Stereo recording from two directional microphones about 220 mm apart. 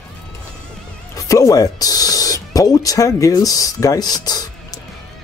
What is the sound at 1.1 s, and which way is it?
Music, 15° left (ahead or behind).